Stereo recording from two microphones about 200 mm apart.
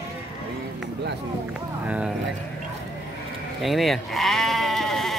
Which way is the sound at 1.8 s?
5° right (ahead or behind).